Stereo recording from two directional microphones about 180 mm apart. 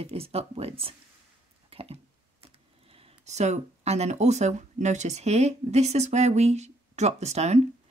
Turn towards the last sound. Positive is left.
turn(degrees=-35)  # may be behind; listen again after turning